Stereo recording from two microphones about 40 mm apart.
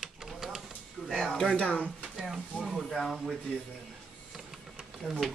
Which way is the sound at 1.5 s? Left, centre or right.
Left.